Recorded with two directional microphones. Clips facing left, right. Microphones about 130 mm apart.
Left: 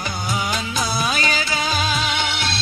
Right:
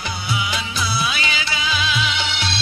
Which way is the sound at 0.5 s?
45° left (ahead or behind).